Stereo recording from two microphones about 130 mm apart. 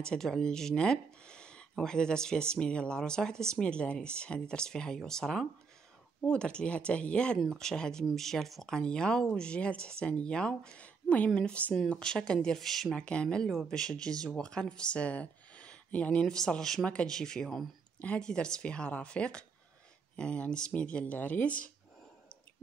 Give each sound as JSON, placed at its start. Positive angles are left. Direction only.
{"t": 0.0, "sound": "speech", "side_deg": 5}